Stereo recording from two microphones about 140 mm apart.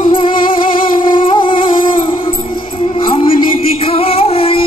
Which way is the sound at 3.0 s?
35° left (ahead or behind).